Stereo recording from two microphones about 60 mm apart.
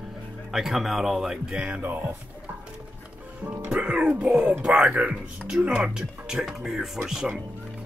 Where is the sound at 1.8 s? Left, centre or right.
Right.